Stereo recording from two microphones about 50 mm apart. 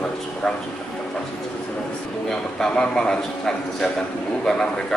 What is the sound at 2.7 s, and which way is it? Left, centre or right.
Speech, centre.